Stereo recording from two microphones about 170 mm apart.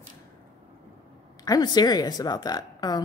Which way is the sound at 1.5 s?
25° left (ahead or behind).